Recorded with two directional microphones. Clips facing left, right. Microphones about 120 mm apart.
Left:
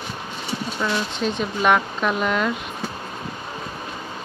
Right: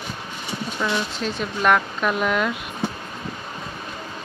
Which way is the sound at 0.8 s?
Centre (ahead or behind).